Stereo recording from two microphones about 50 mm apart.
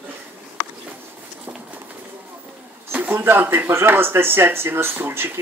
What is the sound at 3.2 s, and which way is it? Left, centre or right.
Speech, right.